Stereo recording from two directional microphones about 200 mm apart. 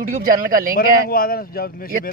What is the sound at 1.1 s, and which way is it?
A man's voice, 45° left (ahead or behind).